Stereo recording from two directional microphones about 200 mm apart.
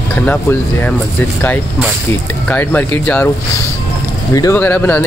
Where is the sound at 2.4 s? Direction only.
10° left (ahead or behind).